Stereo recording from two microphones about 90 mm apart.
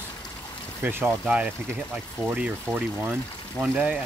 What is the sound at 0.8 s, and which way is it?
Speech, 25° right (ahead or behind).